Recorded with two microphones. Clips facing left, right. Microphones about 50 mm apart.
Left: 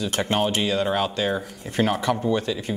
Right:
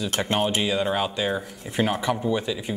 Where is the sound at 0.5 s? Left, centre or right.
Centre.